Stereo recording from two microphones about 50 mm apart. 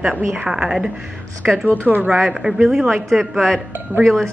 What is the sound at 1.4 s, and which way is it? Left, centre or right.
Speech, right.